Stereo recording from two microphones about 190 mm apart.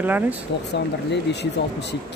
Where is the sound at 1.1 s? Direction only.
65° left (ahead or behind).